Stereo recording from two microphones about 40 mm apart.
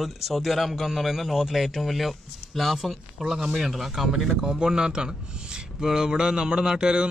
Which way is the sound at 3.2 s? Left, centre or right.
Centre.